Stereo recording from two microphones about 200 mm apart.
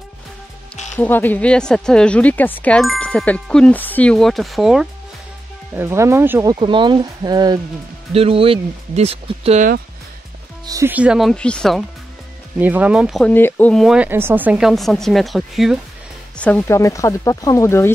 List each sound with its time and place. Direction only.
0.9 s speech: 10° left (ahead or behind)
5.8 s speech: 15° right (ahead or behind); by 9.7 s 30° right (ahead or behind)
10.7 s speech: 10° right (ahead or behind); by 11.8 s 5° left (ahead or behind)
12.5 s speech: 10° right (ahead or behind)
13.3 s speech: 10° left (ahead or behind)